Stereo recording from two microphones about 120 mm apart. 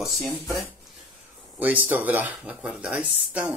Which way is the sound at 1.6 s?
15° right (ahead or behind).